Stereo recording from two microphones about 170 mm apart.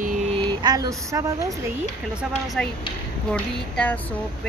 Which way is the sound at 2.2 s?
5° left (ahead or behind).